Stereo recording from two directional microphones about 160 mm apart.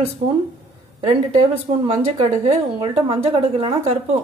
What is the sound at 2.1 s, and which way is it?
A woman's voice, 40° right (ahead or behind).